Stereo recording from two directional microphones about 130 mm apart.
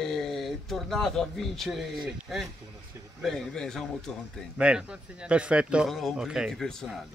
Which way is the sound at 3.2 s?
Centre (ahead or behind).